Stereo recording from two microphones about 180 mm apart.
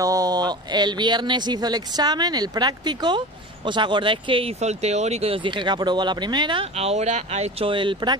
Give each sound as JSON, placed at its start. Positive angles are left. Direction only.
{"t": 0.0, "sound": "speech", "side_deg": -20}